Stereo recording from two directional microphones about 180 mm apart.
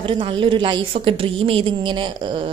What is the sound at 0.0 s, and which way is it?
A woman's voice, 30° right (ahead or behind).